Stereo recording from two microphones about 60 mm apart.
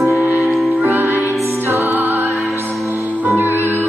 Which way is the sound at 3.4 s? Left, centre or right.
Right.